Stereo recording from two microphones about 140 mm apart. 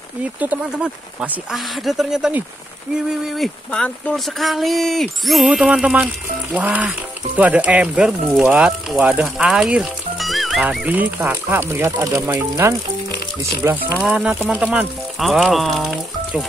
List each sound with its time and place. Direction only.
0.4 s speech: 10° right (ahead or behind)
14.0 s speech: 10° right (ahead or behind)